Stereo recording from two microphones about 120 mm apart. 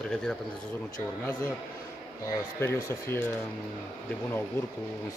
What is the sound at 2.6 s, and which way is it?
Speech, 20° left (ahead or behind).